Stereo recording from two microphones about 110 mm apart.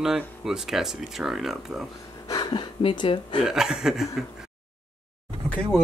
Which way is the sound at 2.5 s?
45° left (ahead or behind).